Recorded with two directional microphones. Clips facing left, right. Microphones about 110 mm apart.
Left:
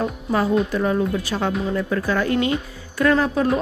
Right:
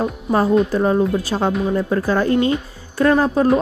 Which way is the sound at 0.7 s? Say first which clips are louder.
Right 4 dB; 30° right (ahead or behind).